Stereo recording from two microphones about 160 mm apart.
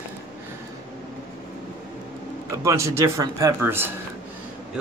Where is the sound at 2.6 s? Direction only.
20° right (ahead or behind).